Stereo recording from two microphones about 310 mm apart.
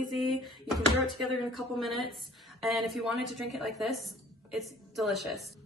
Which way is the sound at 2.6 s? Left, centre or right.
Centre.